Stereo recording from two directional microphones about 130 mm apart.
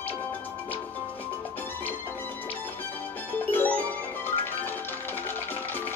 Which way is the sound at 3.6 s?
15° left (ahead or behind).